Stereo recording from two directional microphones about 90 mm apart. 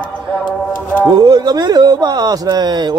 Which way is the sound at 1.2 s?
45° right (ahead or behind).